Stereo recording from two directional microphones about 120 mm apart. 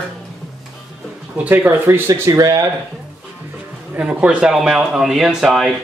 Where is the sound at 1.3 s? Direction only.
10° right (ahead or behind); by 2.6 s 30° right (ahead or behind).